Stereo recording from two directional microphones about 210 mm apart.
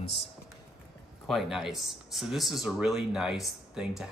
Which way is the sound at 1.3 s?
Centre (ahead or behind).